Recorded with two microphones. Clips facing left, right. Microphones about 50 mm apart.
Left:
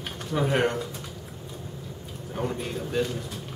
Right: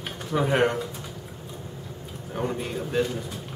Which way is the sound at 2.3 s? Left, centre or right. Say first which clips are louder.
Right 2 dB; centre.